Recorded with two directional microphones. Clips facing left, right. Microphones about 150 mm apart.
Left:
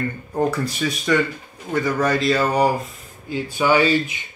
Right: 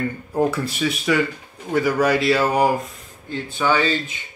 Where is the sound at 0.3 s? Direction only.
5° right (ahead or behind).